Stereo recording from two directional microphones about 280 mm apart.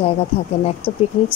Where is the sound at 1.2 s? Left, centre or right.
Left.